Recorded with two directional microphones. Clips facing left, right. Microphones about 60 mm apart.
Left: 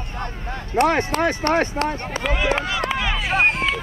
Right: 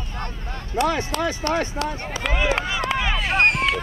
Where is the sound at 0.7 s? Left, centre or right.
Left.